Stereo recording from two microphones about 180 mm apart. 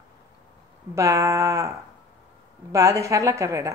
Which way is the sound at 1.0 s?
15° right (ahead or behind).